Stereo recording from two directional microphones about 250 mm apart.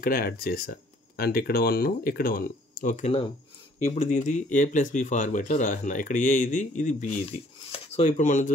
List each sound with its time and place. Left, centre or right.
0.0 s speech: left